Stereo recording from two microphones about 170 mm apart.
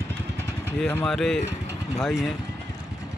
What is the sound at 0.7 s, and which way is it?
A man's voice, 5° left (ahead or behind).